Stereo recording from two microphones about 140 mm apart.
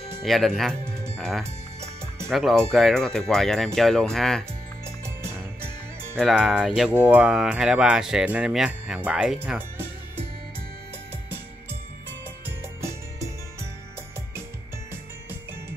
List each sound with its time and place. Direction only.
0.2 s speech: centre (ahead or behind)
1.4 s music: 20° right (ahead or behind)
2.3 s speech: centre (ahead or behind)
4.8 s music: 20° right (ahead or behind)
6.1 s speech: centre (ahead or behind)
12.4 s music: 20° right (ahead or behind)